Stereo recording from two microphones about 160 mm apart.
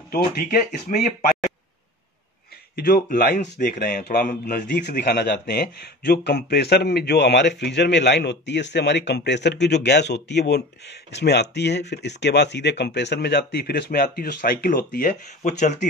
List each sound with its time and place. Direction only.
0.1 s speech: 70° left (ahead or behind)
0.8 s speech: 45° left (ahead or behind)
2.7 s speech: 75° left (ahead or behind)
3.3 s speech: 50° left (ahead or behind)
3.7 s a man's voice: 75° left (ahead or behind)
15.4 s speech: 50° left (ahead or behind)